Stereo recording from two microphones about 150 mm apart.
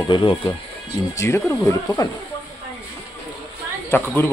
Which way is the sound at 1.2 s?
15° left (ahead or behind).